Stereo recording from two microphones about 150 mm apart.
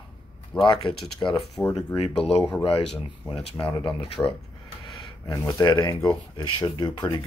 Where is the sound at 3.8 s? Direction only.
35° left (ahead or behind).